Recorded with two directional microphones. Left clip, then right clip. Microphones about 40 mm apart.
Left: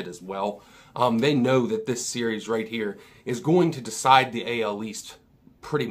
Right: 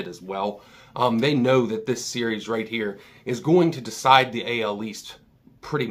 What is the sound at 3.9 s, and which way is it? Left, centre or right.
Speech, left.